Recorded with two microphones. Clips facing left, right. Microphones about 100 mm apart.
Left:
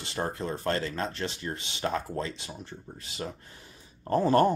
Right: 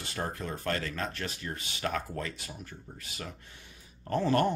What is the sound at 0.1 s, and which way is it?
Speech, 25° left (ahead or behind).